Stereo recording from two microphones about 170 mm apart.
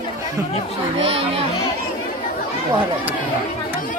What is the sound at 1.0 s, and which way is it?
Speech, 35° right (ahead or behind).